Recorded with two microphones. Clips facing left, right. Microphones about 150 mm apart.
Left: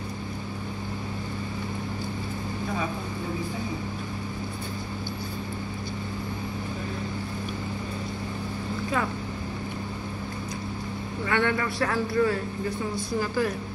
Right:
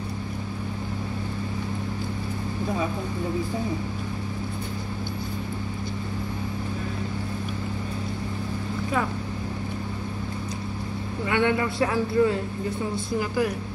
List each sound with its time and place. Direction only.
11.2 s a man's voice: 15° right (ahead or behind)